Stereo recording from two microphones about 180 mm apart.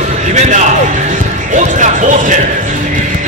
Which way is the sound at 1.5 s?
45° right (ahead or behind).